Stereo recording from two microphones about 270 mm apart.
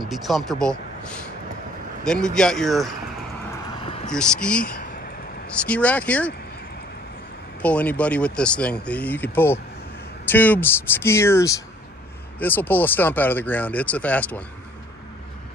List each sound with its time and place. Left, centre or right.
0.1 s speech: centre
2.2 s speech: centre
3.8 s a sound: centre
4.1 s speech: centre
4.7 s vehicle: left
5.7 s speech: centre
7.6 s speech: centre